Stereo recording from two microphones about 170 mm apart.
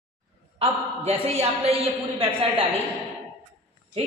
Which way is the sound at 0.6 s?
35° right (ahead or behind).